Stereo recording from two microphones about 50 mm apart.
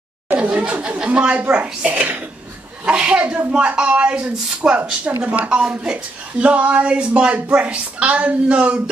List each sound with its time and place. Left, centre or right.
0.3 s speech: right